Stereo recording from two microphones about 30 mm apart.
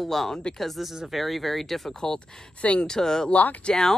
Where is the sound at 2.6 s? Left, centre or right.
Left.